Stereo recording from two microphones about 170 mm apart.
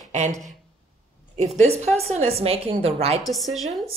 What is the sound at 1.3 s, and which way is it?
A woman's voice, 45° right (ahead or behind).